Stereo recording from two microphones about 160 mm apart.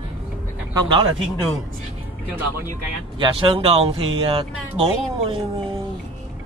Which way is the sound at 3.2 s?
35° right (ahead or behind).